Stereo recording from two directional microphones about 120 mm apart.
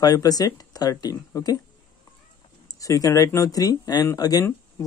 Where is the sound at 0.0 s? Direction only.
30° left (ahead or behind).